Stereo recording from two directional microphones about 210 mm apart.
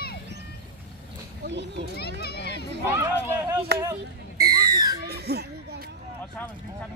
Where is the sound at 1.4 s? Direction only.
55° right (ahead or behind).